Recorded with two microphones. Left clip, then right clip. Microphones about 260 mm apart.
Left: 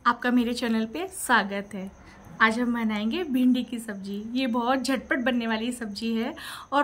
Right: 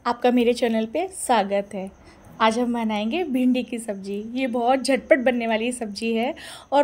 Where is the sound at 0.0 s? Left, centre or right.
Centre.